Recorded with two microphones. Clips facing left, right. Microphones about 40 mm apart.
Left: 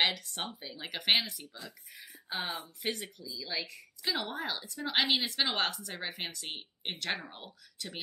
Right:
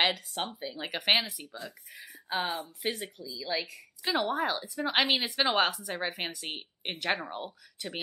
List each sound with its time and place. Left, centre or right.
0.0 s speech: centre
1.6 s speech: right
2.3 s speech: centre
6.2 s speech: right